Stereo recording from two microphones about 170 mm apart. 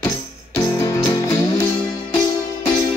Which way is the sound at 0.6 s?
20° left (ahead or behind).